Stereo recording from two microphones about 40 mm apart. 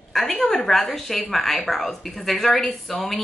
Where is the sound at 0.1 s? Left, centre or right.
Centre.